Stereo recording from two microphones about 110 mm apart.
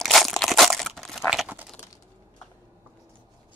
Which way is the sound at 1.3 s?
10° right (ahead or behind).